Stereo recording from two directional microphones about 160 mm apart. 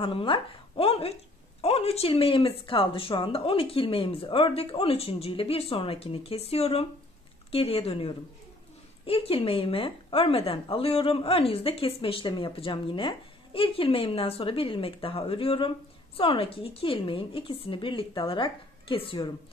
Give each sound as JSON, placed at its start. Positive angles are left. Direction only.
{"t": 0.0, "sound": "a woman's voice", "side_deg": 35}